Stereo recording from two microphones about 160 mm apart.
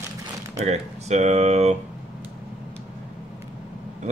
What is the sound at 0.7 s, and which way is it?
Speech, 45° right (ahead or behind).